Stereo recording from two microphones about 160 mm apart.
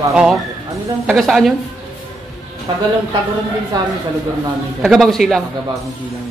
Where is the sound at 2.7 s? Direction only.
25° right (ahead or behind).